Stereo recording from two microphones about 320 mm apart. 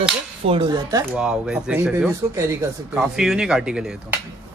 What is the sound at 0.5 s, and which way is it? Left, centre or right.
A man's voice, centre.